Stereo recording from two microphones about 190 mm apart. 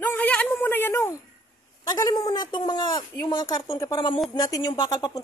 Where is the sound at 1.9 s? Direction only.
20° left (ahead or behind).